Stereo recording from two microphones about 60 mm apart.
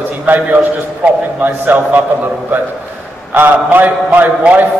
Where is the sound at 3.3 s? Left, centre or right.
Right.